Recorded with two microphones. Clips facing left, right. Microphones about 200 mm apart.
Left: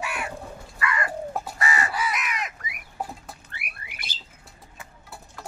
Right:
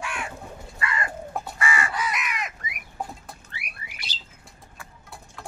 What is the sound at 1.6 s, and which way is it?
Crow, 40° left (ahead or behind).